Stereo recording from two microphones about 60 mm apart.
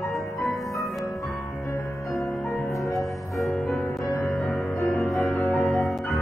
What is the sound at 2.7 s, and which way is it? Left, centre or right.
Music, left.